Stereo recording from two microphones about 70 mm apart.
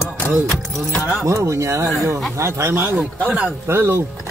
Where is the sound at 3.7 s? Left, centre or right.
Right.